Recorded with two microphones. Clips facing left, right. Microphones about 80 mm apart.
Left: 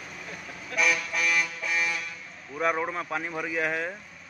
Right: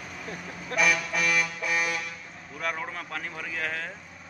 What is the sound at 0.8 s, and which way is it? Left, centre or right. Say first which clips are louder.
Speech: even; right.